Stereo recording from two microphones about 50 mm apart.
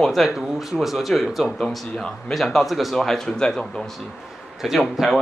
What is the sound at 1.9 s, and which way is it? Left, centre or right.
Speech, centre.